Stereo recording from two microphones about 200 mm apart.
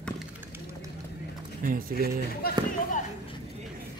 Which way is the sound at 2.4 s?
50° left (ahead or behind).